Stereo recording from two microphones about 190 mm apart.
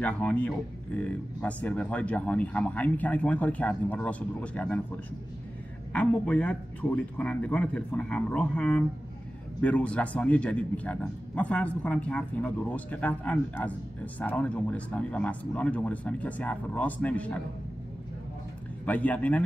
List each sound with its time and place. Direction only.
0.0 s a man's voice: 5° left (ahead or behind)
18.9 s a man's voice: 10° left (ahead or behind)